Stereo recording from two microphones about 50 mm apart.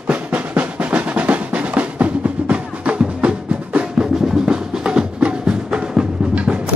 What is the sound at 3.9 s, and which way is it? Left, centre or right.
Music, centre.